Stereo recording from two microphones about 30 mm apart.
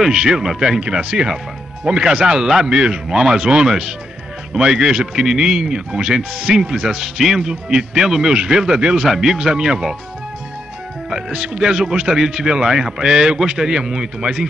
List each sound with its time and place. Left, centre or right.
0.0 s a man's voice: centre
2.7 s speech: right
3.1 s speech: centre
9.0 s speech: centre
11.1 s speech: right